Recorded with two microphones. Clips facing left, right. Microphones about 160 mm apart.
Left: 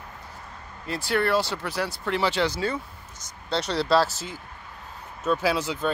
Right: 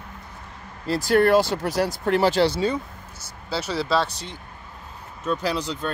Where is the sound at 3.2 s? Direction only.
5° right (ahead or behind).